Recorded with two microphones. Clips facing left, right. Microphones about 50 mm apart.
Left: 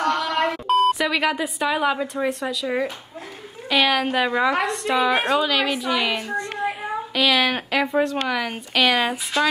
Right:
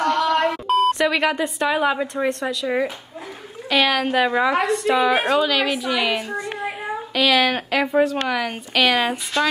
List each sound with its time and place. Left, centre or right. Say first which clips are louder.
0.0 s beep: right 3 dB; centre
2.2 s a woman's voice: right 2 dB; centre